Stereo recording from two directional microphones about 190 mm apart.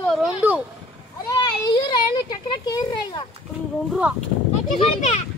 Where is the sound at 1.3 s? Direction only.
20° left (ahead or behind).